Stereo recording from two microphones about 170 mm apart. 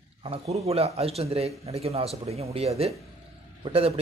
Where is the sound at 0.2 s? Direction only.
35° right (ahead or behind).